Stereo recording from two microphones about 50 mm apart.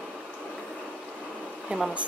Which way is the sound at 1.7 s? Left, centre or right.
Right.